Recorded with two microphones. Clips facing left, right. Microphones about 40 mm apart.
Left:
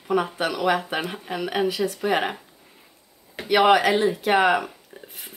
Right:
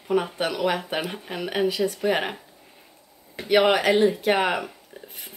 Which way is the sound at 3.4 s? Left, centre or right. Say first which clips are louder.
Left 2 dB; centre.